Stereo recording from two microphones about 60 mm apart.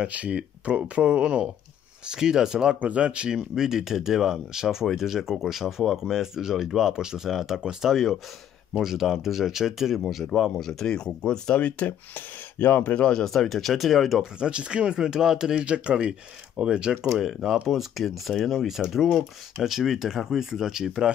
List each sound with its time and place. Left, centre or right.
0.0 s speech: right
2.8 s speech: right; by 10.2 s centre
10.3 s speech: centre; by 11.9 s left
12.5 s speech: left
13.0 s speech: centre
14.4 s speech: centre
17.1 s speech: centre